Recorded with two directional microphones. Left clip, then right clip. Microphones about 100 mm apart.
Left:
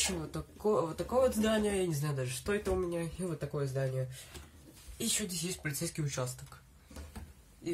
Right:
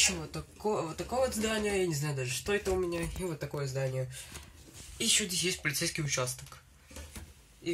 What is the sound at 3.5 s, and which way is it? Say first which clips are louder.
Speech: left 1 dB; 50° right (ahead or behind).